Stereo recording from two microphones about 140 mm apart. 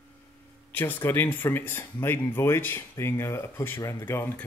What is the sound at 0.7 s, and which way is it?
Speech, 15° left (ahead or behind).